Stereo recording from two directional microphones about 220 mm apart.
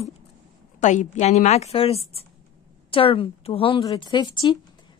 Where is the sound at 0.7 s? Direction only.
35° left (ahead or behind).